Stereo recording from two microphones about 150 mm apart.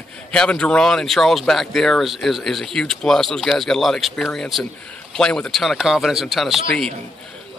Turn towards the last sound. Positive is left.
turn(degrees=0)  # may be behind; listen again after turning